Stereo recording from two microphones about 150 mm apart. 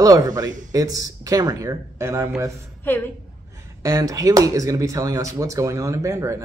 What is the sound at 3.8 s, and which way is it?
Speech, 25° right (ahead or behind).